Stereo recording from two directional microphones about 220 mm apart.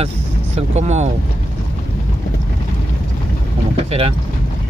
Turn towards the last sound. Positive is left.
turn(degrees=-25)  # may be behind; listen again after turning